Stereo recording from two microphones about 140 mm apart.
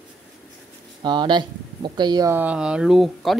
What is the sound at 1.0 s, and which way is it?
Speech, 30° right (ahead or behind).